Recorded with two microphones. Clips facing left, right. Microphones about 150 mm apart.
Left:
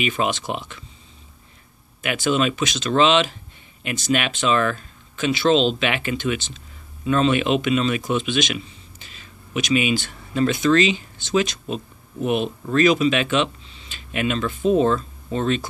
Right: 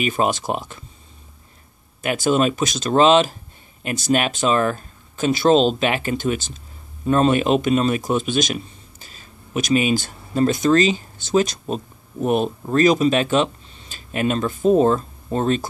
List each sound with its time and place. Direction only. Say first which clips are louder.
0.0 s speech: right 2 dB; 45° right (ahead or behind)
2.0 s speech: right 3 dB; 45° right (ahead or behind)